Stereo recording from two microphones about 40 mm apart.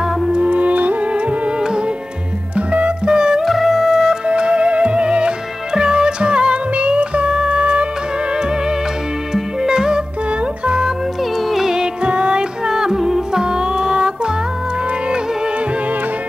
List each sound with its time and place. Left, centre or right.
0.3 s music: right
2.5 s music: right
3.1 s music: centre
3.4 s music: centre
4.3 s music: right
9.3 s music: centre
11.5 s music: centre